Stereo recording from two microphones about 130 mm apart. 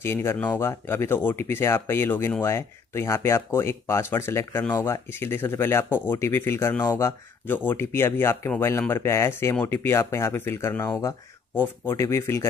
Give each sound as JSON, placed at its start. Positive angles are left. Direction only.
{"t": 0.0, "sound": "speech", "side_deg": 20}